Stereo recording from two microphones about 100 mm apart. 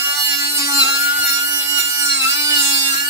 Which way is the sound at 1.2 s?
35° right (ahead or behind).